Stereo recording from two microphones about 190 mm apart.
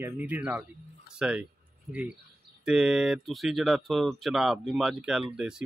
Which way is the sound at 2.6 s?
5° right (ahead or behind).